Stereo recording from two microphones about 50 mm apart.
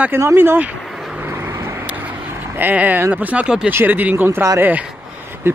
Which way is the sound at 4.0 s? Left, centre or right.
Right.